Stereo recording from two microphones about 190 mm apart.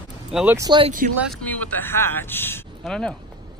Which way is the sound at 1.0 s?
45° right (ahead or behind).